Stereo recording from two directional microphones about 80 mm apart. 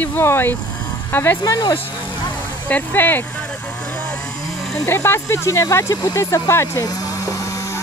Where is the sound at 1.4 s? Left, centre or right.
Left.